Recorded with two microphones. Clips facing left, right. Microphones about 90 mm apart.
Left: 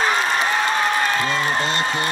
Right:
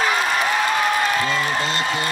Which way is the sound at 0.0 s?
35° left (ahead or behind).